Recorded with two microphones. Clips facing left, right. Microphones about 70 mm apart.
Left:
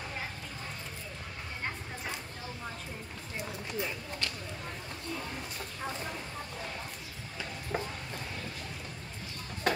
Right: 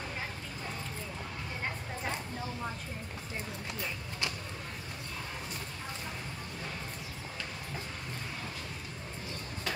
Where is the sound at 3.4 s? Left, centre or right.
Centre.